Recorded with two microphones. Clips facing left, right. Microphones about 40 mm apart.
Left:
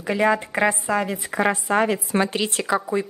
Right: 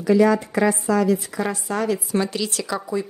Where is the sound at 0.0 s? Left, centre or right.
Left.